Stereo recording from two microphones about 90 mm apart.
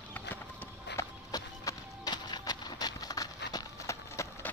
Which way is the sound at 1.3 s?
45° left (ahead or behind).